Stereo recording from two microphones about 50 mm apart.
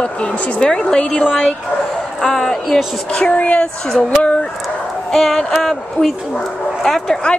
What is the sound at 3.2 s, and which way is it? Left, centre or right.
Speech, left.